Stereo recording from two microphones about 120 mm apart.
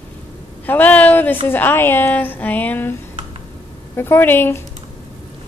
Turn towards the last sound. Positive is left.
turn(degrees=15)  # may be behind; listen again after turning